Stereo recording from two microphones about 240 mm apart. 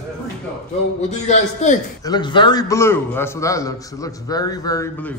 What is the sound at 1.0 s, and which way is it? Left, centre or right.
Speech, left.